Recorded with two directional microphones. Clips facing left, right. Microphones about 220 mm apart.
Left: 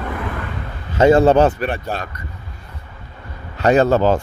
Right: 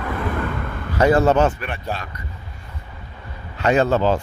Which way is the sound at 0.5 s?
55° right (ahead or behind).